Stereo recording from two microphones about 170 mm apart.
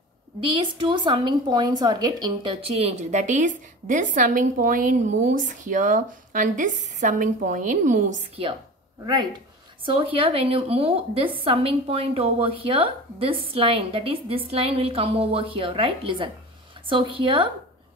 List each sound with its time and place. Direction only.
0.4 s a woman's voice: 30° right (ahead or behind); by 8.3 s 45° right (ahead or behind)
9.0 s a woman's voice: 25° right (ahead or behind)